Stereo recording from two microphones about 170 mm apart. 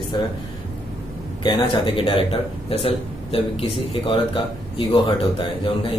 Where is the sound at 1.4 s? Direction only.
30° left (ahead or behind).